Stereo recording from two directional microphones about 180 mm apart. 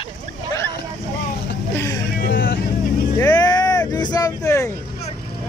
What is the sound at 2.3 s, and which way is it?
Speech, 55° left (ahead or behind).